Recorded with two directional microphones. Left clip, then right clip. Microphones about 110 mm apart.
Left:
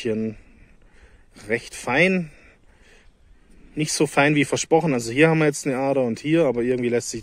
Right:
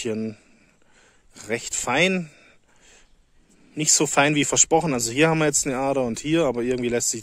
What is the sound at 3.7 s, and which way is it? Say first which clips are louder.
Speech: right 1 dB; 40° right (ahead or behind).